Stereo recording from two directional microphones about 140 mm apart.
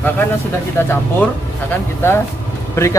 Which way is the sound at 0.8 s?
15° left (ahead or behind).